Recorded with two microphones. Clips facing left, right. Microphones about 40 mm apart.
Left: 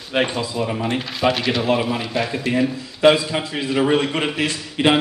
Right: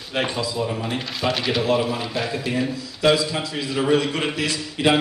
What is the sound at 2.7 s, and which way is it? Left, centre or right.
A man's voice, left.